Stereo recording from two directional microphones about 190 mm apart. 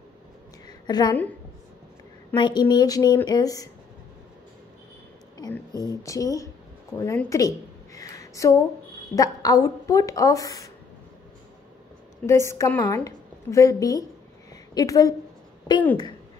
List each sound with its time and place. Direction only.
0.7 s a sound: 20° left (ahead or behind)
2.3 s a woman's voice: 25° left (ahead or behind)
5.9 s a woman's voice: 20° left (ahead or behind)
12.3 s a woman's voice: 15° left (ahead or behind)